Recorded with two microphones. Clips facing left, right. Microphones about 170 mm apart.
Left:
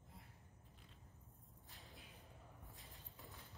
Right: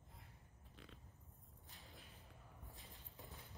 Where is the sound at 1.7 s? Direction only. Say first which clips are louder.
Even; centre (ahead or behind).